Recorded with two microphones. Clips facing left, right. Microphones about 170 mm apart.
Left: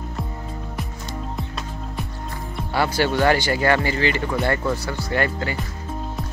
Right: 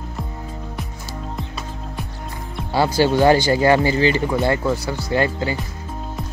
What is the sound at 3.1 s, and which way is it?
Speech, 15° right (ahead or behind).